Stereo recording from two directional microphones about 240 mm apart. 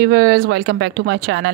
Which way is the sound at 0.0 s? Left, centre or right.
Right.